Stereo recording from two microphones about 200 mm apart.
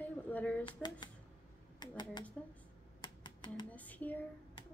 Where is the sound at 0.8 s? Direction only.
20° left (ahead or behind).